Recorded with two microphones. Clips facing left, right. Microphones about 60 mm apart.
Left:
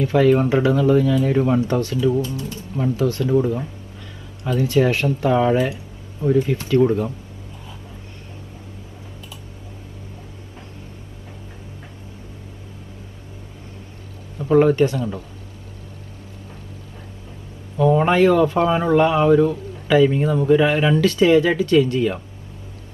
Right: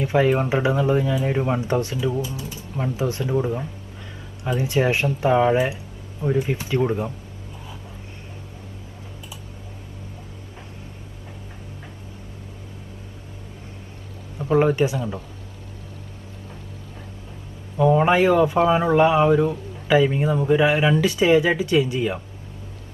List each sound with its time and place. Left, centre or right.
0.0 s speech: centre
2.0 s speech: centre
14.4 s speech: centre
17.7 s speech: centre